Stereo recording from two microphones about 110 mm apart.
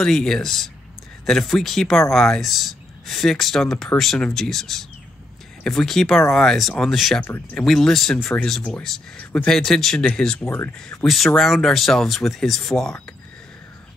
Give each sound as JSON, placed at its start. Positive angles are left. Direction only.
{"t": 0.0, "sound": "speech", "side_deg": 5}
{"t": 7.2, "sound": "speech", "side_deg": 15}
{"t": 7.6, "sound": "speech", "side_deg": 5}